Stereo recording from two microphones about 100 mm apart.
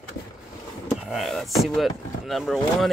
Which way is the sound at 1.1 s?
Centre (ahead or behind).